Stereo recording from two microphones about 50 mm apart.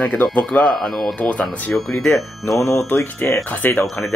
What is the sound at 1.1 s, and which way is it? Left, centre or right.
Speech, left.